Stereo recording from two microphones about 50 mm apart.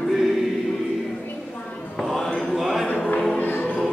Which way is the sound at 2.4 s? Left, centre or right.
Centre.